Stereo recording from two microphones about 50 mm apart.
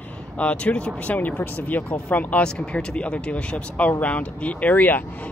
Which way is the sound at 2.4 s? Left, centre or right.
Centre.